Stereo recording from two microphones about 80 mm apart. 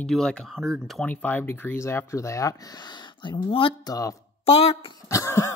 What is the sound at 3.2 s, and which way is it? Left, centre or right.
Speech, left.